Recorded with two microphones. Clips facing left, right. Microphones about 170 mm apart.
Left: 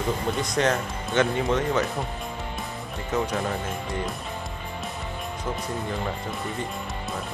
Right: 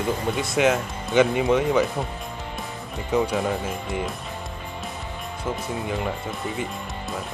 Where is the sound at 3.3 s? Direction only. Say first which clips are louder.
Right 3 dB; centre (ahead or behind).